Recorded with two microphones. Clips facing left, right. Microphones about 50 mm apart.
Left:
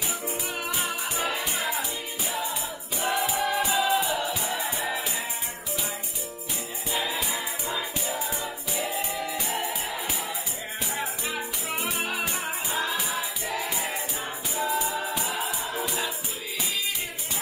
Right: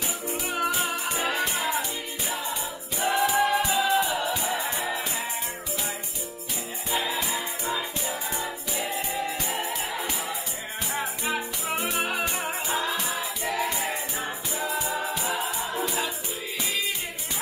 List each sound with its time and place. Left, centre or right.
0.7 s music: centre
6.9 s music: centre
9.1 s music: centre
9.5 s music: centre